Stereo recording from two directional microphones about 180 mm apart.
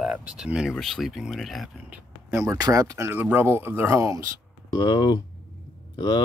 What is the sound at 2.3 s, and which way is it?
Speech, 15° right (ahead or behind).